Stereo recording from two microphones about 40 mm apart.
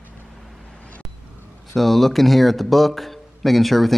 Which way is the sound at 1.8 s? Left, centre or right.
Centre.